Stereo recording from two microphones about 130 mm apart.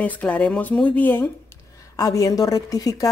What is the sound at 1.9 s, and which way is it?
A woman's voice, 30° left (ahead or behind).